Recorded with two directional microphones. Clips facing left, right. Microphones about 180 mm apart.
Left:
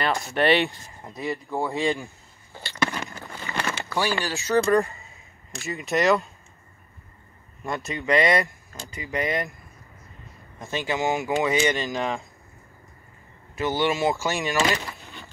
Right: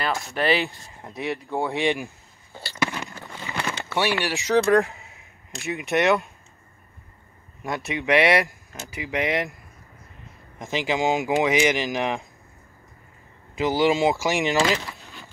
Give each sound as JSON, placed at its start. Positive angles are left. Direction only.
{"t": 0.0, "sound": "speech", "side_deg": 0}
{"t": 2.0, "sound": "a sound", "side_deg": -15}
{"t": 2.8, "sound": "a sound", "side_deg": 0}
{"t": 3.9, "sound": "speech", "side_deg": -5}
{"t": 4.7, "sound": "speech", "side_deg": -15}
{"t": 5.7, "sound": "speech", "side_deg": 0}
{"t": 8.1, "sound": "speech", "side_deg": -75}
{"t": 8.9, "sound": "speech", "side_deg": -90}
{"t": 10.9, "sound": "speech", "side_deg": -15}
{"t": 11.6, "sound": "speech", "side_deg": -90}
{"t": 11.9, "sound": "speech", "side_deg": -15}
{"t": 13.6, "sound": "speech", "side_deg": -15}
{"t": 15.0, "sound": "a sound", "side_deg": 0}